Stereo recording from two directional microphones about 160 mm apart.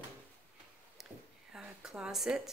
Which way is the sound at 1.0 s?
5° right (ahead or behind).